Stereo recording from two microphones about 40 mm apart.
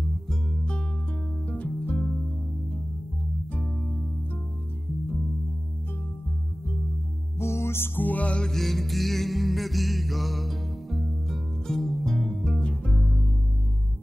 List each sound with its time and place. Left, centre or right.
1.5 s music: left
3.5 s music: left
7.3 s music: left
8.0 s music: left
8.5 s music: centre
12.5 s music: left